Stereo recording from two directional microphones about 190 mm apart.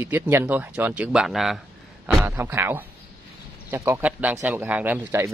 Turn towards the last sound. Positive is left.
turn(degrees=-15)  # may be behind; listen again after turning